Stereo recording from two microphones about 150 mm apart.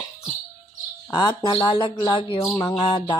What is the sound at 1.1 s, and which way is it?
Speech, 30° left (ahead or behind).